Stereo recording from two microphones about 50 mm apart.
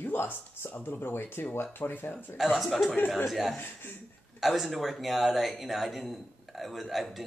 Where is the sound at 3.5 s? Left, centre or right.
Left.